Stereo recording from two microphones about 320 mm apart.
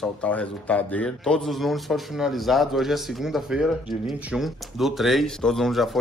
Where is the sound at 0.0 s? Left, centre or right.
Centre.